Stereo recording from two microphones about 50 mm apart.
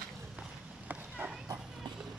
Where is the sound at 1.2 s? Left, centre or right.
Right.